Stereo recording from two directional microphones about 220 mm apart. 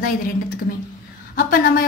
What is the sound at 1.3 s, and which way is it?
Speech, 45° left (ahead or behind).